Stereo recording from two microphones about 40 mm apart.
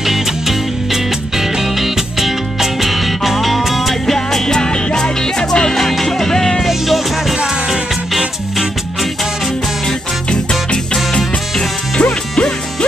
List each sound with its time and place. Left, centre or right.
0.0 s music: centre
4.5 s music: centre
5.8 s music: centre
6.6 s music: centre
7.3 s music: centre
12.0 s music: left